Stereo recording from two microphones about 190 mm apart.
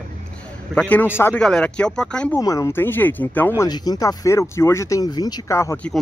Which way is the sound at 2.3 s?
15° left (ahead or behind).